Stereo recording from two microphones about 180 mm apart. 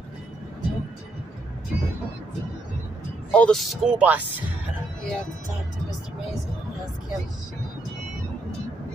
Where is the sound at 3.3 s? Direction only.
5° left (ahead or behind).